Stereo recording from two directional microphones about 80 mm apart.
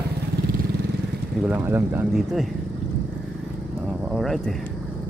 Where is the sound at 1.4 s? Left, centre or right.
Right.